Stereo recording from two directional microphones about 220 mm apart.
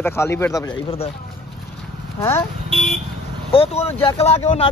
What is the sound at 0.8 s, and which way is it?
Speech, 25° left (ahead or behind).